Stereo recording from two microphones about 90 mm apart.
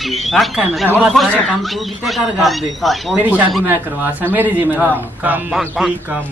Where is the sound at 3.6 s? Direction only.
25° right (ahead or behind).